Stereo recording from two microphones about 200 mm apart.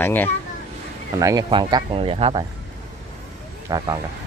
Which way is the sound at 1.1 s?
15° right (ahead or behind).